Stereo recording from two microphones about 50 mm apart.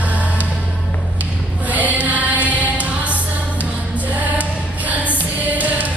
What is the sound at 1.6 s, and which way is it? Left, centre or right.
Choir, right.